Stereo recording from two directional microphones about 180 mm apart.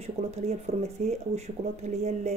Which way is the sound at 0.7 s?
35° right (ahead or behind).